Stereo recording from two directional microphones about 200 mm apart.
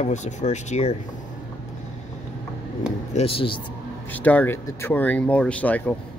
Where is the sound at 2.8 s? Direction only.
30° left (ahead or behind).